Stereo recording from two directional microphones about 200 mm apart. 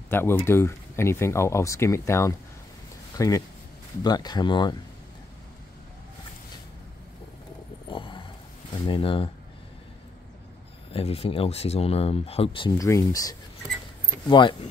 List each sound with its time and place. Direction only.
0.1 s speech: 10° left (ahead or behind)
7.9 s a sound: 25° left (ahead or behind)
8.7 s speech: 25° left (ahead or behind)
10.9 s speech: 30° left (ahead or behind)